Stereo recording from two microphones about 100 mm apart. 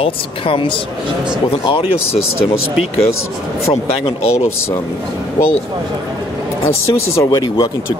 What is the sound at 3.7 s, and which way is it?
Speech, 75° left (ahead or behind).